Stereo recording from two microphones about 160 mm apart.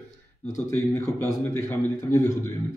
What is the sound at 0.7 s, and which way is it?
A man's voice, 15° left (ahead or behind).